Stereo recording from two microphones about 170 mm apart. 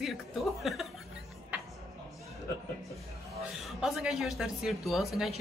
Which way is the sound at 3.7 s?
5° right (ahead or behind).